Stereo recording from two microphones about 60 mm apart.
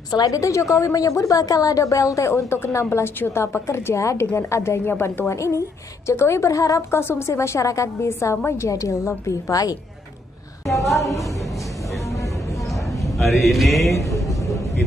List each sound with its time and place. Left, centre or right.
0.1 s a woman's voice: left
4.9 s a woman's voice: left
5.3 s a woman's voice: left
6.9 s a woman's voice: left
10.7 s a woman's voice: centre
13.0 s a sound: centre